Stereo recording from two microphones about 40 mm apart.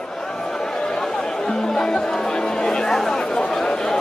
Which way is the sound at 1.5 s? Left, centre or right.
Centre.